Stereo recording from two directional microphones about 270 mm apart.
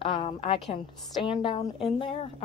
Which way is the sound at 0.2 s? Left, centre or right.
Left.